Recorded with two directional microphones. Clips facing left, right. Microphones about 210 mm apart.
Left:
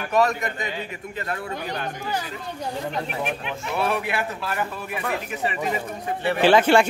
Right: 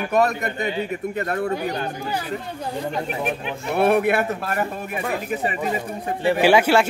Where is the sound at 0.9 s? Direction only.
45° right (ahead or behind).